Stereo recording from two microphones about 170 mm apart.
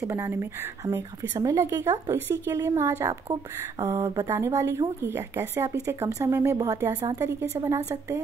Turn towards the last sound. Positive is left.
turn(degrees=-15)  # may be behind; listen again after turning